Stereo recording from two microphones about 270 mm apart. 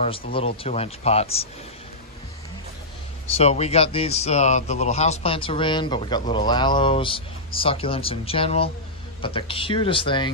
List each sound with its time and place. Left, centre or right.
0.0 s speech: left
3.3 s speech: left